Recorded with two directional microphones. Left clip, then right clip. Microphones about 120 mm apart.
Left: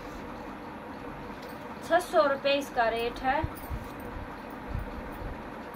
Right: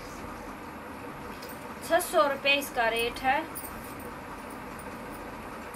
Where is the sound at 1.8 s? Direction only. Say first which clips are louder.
Even; 10° left (ahead or behind).